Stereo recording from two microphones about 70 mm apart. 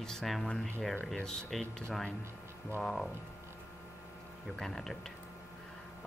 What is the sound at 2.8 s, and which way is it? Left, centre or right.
Speech, centre.